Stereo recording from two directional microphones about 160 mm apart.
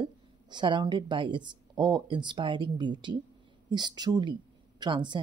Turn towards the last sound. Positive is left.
turn(degrees=-30)  # may be behind; listen again after turning